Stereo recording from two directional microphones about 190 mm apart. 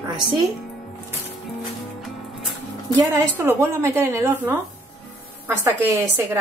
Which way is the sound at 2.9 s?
10° right (ahead or behind).